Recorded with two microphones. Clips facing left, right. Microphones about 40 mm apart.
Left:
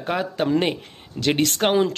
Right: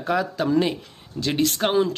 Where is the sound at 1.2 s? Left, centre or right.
Left.